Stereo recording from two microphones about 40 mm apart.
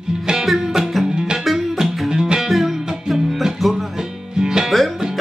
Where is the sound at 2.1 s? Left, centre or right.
Centre.